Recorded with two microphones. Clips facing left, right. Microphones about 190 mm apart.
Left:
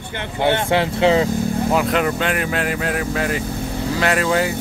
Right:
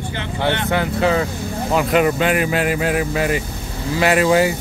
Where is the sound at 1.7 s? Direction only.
5° right (ahead or behind).